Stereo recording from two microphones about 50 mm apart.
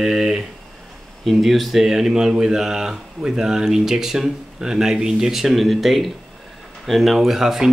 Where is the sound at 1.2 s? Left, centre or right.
Centre.